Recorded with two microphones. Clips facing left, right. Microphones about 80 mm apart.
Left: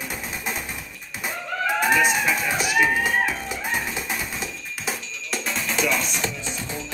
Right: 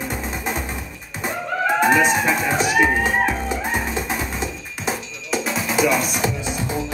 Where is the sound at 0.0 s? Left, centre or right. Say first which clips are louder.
Right 5 dB; centre.